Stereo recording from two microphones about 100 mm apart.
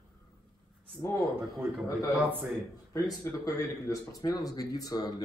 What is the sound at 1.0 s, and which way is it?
Speech, 30° left (ahead or behind).